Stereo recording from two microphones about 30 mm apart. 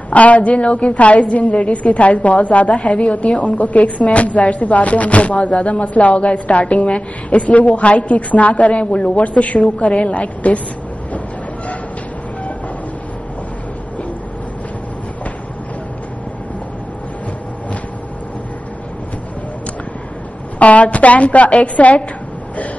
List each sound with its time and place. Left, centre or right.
0.1 s a woman's voice: left
20.5 s speech: left